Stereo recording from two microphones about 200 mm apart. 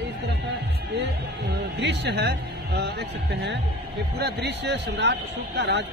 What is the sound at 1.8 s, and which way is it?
A man's voice, 60° right (ahead or behind).